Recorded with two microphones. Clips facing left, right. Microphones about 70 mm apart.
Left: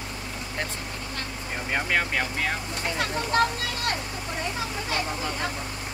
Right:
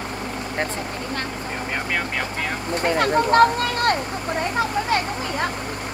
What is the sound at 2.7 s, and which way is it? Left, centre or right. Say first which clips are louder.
Speech: right 9 dB; right.